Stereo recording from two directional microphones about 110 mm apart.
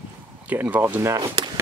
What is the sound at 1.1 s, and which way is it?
Speech, 40° right (ahead or behind).